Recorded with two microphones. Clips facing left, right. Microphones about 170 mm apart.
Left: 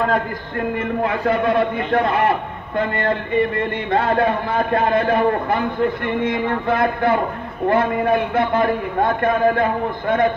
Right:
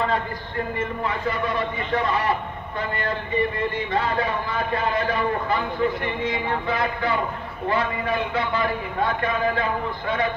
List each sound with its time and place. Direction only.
0.7 s a man's voice: 60° left (ahead or behind)